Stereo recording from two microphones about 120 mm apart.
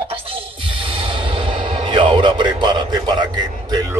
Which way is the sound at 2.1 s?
40° right (ahead or behind).